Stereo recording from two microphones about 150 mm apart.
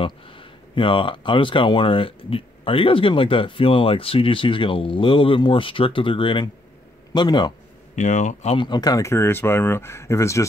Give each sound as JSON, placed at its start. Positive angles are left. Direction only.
{"t": 0.0, "sound": "speech", "side_deg": 35}
{"t": 7.9, "sound": "speech", "side_deg": 55}
{"t": 8.5, "sound": "speech", "side_deg": 30}